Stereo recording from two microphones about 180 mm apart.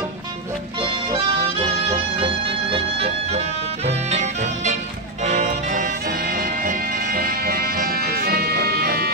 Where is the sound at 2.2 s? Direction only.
30° right (ahead or behind).